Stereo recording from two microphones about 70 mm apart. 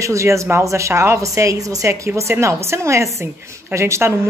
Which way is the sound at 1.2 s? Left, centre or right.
Right.